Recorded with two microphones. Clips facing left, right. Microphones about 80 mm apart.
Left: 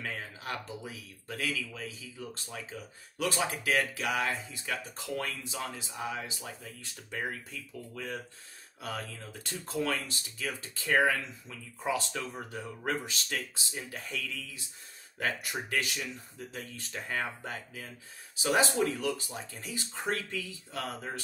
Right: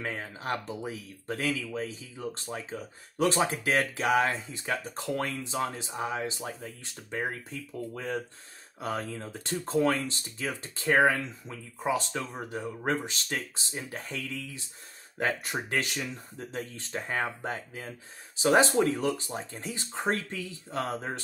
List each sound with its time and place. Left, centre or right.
0.0 s speech: right